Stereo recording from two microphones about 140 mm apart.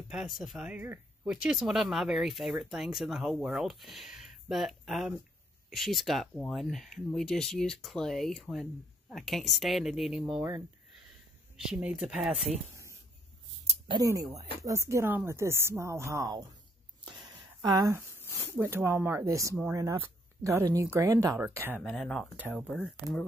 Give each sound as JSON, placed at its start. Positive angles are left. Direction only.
{"t": 0.1, "sound": "speech", "side_deg": -5}
{"t": 11.5, "sound": "speech", "side_deg": -5}
{"t": 14.6, "sound": "speech", "side_deg": -20}
{"t": 17.6, "sound": "speech", "side_deg": -25}
{"t": 18.1, "sound": "a sound", "side_deg": 15}
{"t": 18.5, "sound": "speech", "side_deg": -15}
{"t": 21.8, "sound": "speech", "side_deg": 5}